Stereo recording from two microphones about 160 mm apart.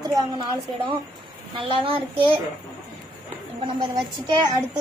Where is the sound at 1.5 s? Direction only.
35° right (ahead or behind).